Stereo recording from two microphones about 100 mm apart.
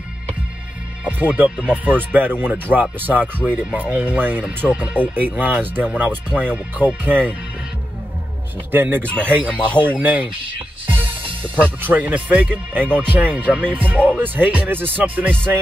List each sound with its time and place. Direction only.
1.0 s speech: 15° right (ahead or behind)
8.7 s speech: 20° right (ahead or behind)
11.8 s speech: 15° right (ahead or behind)